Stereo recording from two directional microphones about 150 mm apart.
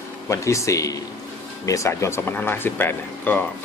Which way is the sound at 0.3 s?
20° left (ahead or behind).